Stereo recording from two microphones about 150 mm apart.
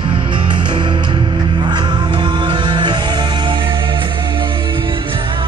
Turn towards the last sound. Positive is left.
turn(degrees=-30)  # may be behind; listen again after turning